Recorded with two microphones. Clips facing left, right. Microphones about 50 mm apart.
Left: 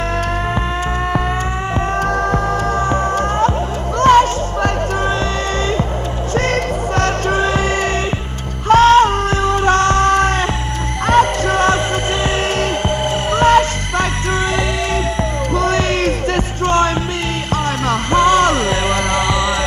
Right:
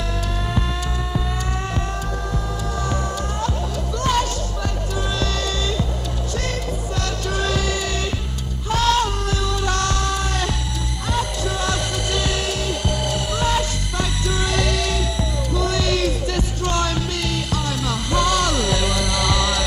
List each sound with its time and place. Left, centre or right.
2.9 s music: left
6.3 s music: left
13.3 s music: left
15.5 s music: left